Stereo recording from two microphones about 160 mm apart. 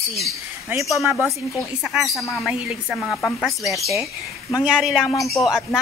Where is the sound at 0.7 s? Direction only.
10° right (ahead or behind).